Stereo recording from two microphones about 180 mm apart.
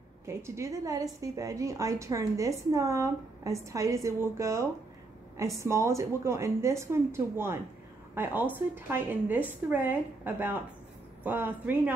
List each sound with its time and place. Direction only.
0.2 s a woman's voice: 15° right (ahead or behind)